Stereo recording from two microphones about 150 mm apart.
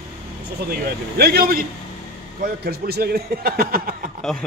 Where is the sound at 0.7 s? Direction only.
90° right.